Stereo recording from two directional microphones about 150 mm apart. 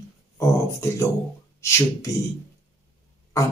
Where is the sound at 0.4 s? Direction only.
20° left (ahead or behind).